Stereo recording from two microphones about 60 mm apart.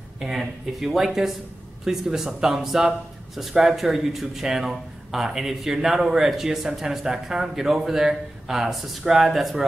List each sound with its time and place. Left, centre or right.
0.2 s speech: centre